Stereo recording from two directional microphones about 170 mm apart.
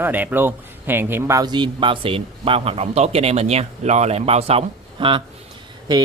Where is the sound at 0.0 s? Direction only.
10° right (ahead or behind); by 5.2 s 35° right (ahead or behind).